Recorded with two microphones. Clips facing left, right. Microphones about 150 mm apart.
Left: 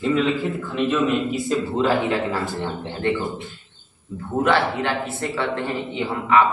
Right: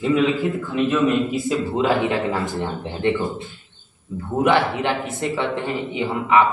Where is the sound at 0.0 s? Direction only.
15° right (ahead or behind).